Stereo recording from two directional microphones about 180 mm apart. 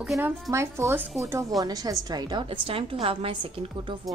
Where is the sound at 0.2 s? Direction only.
15° right (ahead or behind).